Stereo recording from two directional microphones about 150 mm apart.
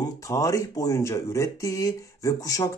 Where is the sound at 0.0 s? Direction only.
20° left (ahead or behind).